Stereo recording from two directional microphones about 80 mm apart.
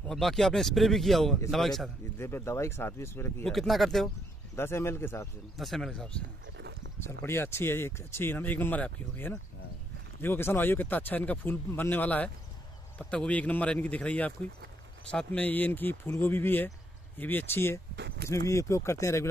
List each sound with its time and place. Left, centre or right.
0.1 s speech: centre
2.1 s speech: left
3.4 s speech: centre
4.6 s speech: left
5.6 s speech: centre
7.2 s speech: left